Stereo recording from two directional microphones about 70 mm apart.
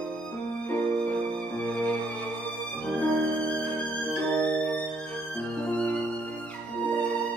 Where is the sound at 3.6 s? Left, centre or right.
Centre.